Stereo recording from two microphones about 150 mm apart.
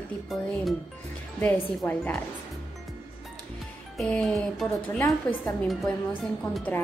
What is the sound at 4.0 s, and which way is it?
A woman's voice, 5° left (ahead or behind).